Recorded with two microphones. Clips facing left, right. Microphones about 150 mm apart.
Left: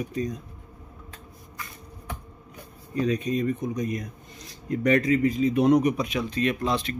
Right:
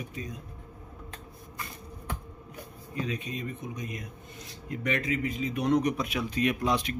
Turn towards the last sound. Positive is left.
turn(degrees=-10)  # may be behind; listen again after turning